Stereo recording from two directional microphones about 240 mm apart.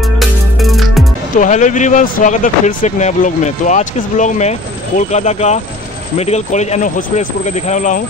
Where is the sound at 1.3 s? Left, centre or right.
Left.